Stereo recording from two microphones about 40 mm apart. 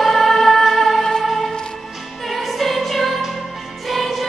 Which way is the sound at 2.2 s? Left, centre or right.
Centre.